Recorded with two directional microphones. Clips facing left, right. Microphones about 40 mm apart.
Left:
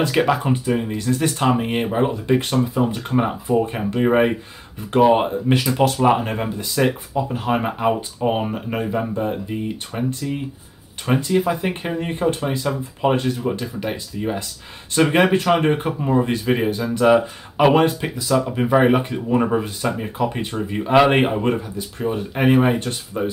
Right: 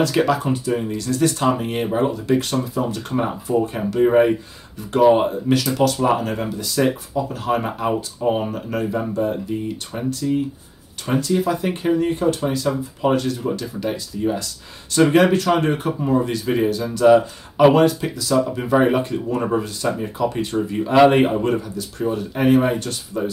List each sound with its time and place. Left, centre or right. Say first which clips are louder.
0.0 s speech: even; left